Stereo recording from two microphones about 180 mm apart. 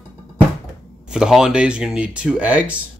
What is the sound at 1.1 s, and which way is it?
Speech, 5° right (ahead or behind).